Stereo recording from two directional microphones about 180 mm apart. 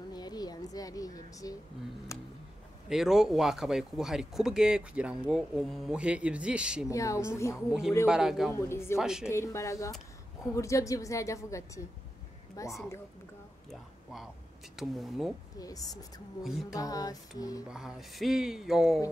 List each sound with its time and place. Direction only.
0.1 s a sound: 20° left (ahead or behind)
2.9 s speech: centre (ahead or behind)
6.9 s a woman's voice: 15° left (ahead or behind)
8.1 s speech: 5° right (ahead or behind)
8.5 s a woman's voice: 15° left (ahead or behind)
8.9 s speech: 5° right (ahead or behind)
9.3 s a woman's voice: 15° left (ahead or behind)
13.7 s speech: centre (ahead or behind)
15.6 s music: 20° left (ahead or behind)
17.6 s speech: 5° right (ahead or behind)